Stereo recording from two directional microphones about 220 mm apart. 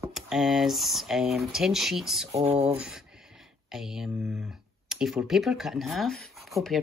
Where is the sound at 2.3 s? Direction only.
25° right (ahead or behind).